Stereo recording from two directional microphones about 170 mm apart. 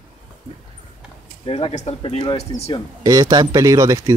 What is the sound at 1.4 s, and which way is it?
Speech, 35° left (ahead or behind).